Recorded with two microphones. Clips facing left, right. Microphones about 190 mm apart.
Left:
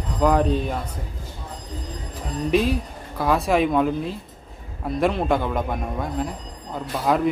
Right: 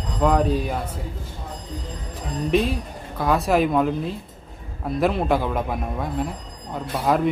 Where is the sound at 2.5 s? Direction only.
Centre (ahead or behind).